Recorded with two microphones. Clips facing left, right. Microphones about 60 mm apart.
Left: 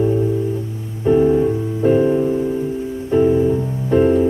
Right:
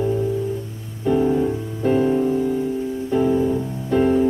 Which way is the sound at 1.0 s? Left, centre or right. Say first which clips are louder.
Left 5 dB; centre.